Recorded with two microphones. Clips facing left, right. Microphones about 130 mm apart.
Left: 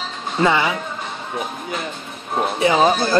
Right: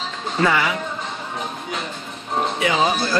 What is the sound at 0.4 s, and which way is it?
Speech, 25° left (ahead or behind).